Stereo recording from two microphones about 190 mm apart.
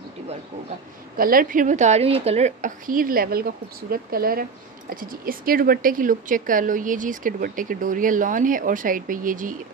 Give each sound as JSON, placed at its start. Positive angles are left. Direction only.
{"t": 1.1, "sound": "a woman's voice", "side_deg": -50}